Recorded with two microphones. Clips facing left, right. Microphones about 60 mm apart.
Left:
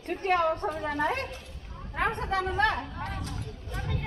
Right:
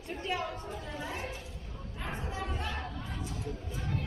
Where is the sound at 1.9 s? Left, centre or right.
Left.